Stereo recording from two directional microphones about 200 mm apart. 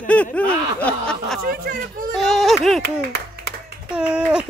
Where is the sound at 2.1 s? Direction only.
Centre (ahead or behind).